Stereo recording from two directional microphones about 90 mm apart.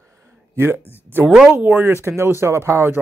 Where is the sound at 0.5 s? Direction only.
25° right (ahead or behind).